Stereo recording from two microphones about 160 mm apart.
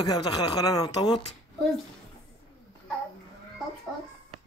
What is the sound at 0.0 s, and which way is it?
Speech, 25° left (ahead or behind).